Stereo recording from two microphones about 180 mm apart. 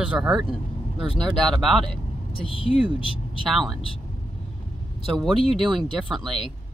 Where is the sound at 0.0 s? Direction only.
5° right (ahead or behind).